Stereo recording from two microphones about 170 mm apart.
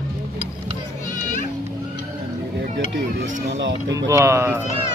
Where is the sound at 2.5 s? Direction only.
90° right.